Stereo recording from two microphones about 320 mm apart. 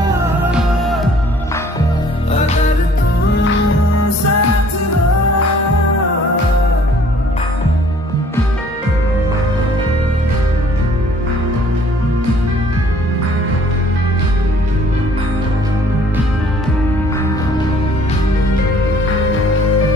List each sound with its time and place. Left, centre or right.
0.5 s music: centre
4.0 s music: left